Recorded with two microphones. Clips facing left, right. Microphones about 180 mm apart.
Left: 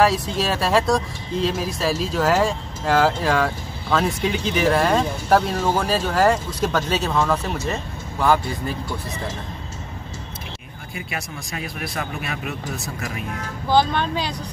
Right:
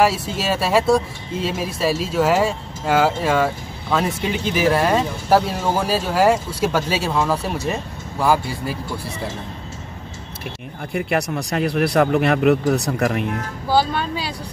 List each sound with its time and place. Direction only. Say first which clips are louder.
0.0 s speech: even; 5° right (ahead or behind)
10.9 s speech: right 11 dB; 60° right (ahead or behind)
13.7 s speech: even; 5° right (ahead or behind)